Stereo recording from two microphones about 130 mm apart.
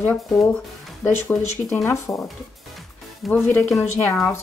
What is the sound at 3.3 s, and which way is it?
Speech, 10° left (ahead or behind).